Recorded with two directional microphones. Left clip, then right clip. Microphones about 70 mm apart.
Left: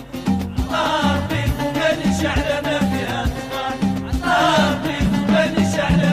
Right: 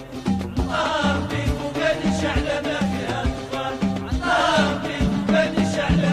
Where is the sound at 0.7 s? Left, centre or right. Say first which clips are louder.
Left 3 dB; left.